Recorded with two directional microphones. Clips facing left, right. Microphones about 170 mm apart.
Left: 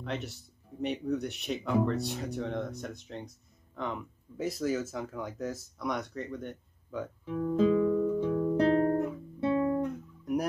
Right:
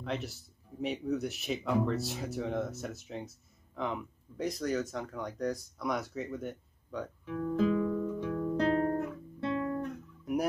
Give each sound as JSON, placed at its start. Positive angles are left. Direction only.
{"t": 0.0, "sound": "speech", "side_deg": 0}
{"t": 7.2, "sound": "guitar", "side_deg": 15}